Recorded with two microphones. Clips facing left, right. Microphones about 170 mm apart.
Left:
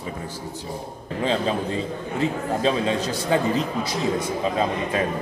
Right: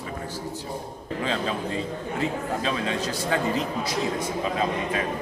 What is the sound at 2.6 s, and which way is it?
Speech, 25° left (ahead or behind).